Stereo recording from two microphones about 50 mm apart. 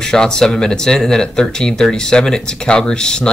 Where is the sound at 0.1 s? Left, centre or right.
Centre.